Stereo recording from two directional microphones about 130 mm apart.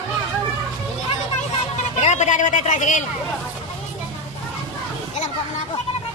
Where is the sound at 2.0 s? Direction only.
65° left (ahead or behind).